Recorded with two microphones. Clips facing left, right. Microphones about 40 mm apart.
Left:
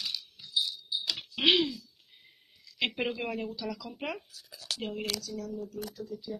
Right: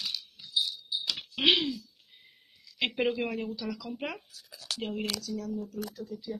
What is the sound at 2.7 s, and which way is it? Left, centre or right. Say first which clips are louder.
Speech: right 3 dB; centre.